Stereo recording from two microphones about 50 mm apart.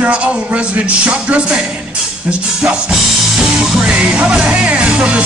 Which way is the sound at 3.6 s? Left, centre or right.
Centre.